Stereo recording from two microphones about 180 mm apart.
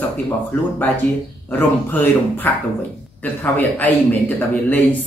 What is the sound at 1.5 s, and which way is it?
Speech, 10° left (ahead or behind).